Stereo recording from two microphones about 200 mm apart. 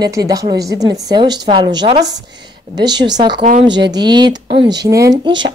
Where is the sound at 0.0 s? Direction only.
20° right (ahead or behind).